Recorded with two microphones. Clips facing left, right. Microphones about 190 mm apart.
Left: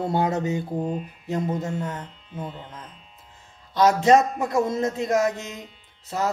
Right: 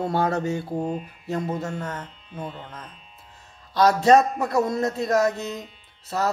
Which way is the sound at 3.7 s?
15° left (ahead or behind).